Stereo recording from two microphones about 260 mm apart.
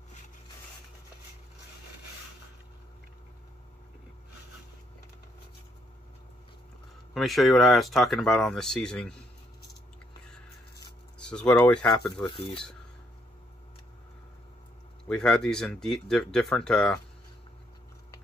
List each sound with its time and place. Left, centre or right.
7.2 s speech: centre
11.2 s speech: centre
12.3 s dishes: centre
15.0 s speech: centre